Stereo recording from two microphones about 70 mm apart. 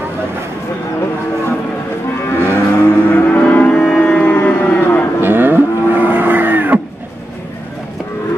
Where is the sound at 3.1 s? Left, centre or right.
Centre.